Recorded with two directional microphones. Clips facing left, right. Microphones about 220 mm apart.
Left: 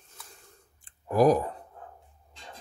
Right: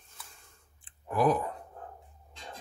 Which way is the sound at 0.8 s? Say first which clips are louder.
Left 5 dB; 40° left (ahead or behind).